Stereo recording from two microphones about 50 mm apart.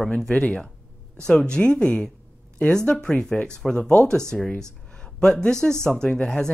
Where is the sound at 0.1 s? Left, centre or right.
Centre.